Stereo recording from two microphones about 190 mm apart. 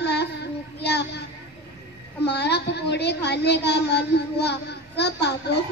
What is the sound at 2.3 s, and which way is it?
A woman's voice, 60° left (ahead or behind).